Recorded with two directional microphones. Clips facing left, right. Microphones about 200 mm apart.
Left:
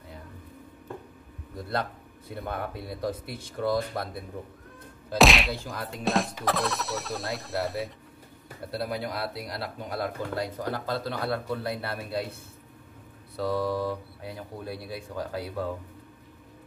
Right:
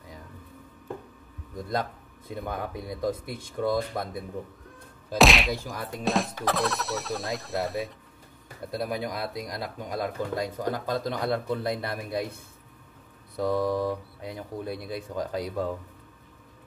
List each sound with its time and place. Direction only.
2.3 s speech: 15° right (ahead or behind)
5.1 s speech: centre (ahead or behind)
5.5 s speech: 15° right (ahead or behind)
6.0 s speech: centre (ahead or behind)
8.7 s speech: 15° right (ahead or behind)
13.4 s speech: 15° right (ahead or behind)